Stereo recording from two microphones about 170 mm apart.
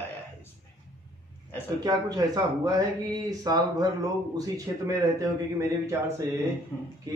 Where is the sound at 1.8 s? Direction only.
20° right (ahead or behind).